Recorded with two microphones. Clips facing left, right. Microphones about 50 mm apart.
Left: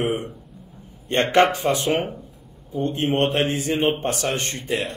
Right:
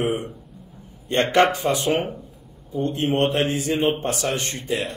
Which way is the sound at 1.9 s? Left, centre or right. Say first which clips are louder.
Even; centre.